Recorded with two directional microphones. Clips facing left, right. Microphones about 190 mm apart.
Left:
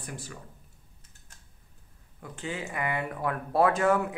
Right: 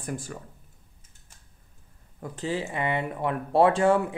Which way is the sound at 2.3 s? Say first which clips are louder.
Right 5 dB; 35° right (ahead or behind).